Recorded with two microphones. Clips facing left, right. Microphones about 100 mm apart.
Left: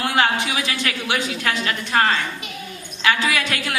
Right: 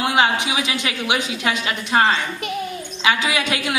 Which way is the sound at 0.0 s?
15° right (ahead or behind).